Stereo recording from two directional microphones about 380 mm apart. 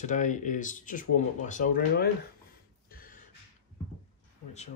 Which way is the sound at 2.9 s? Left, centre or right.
Left.